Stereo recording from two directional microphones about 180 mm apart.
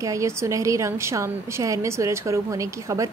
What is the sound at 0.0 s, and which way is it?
A woman's voice, 15° right (ahead or behind).